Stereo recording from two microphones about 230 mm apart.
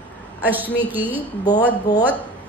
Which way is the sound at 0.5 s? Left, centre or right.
Centre.